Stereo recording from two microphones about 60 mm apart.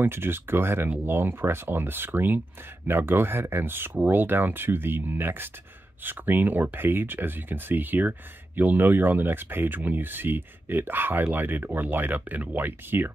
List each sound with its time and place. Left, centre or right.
0.0 s speech: right